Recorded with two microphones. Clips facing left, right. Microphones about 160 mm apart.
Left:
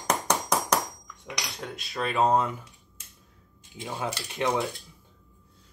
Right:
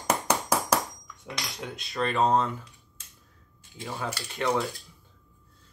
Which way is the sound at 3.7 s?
20° left (ahead or behind).